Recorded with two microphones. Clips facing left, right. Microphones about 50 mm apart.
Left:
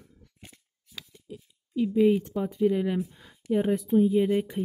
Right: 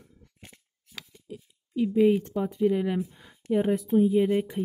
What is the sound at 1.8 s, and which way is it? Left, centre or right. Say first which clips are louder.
Speech: even; centre.